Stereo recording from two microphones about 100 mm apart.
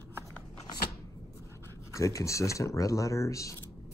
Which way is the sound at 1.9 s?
30° left (ahead or behind).